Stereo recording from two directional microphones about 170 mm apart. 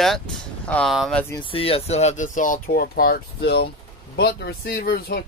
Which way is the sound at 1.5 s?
35° left (ahead or behind).